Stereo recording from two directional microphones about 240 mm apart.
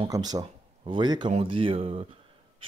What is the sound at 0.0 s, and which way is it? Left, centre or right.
Speech, centre.